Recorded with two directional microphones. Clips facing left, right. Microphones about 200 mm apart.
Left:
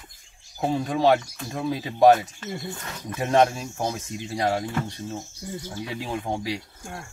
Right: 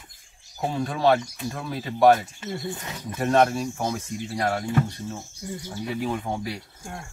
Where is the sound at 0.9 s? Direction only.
15° left (ahead or behind).